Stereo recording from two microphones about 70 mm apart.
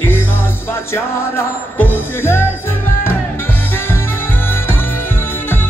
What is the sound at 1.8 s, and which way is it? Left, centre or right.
Music, left.